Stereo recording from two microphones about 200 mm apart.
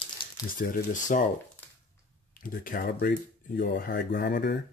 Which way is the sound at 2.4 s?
45° left (ahead or behind).